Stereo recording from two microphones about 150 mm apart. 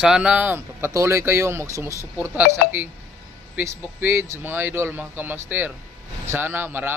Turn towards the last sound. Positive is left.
turn(degrees=-15)  # may be behind; listen again after turning